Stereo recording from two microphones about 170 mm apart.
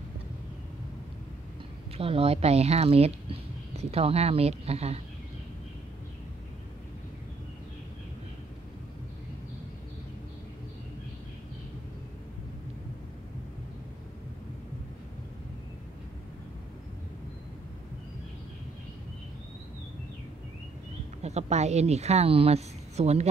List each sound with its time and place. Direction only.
2.0 s speech: 35° right (ahead or behind)
21.2 s a woman's voice: 40° right (ahead or behind)